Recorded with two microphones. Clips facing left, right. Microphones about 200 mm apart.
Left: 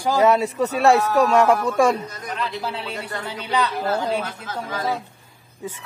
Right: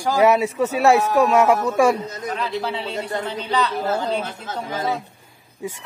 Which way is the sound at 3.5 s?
15° left (ahead or behind).